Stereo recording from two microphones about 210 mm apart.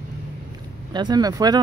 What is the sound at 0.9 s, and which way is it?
Speech, 20° right (ahead or behind).